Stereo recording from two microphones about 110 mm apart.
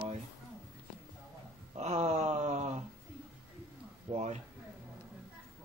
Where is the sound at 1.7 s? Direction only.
80° right.